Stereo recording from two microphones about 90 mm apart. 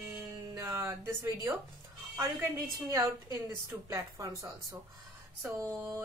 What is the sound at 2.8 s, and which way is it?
A woman's voice, 45° right (ahead or behind).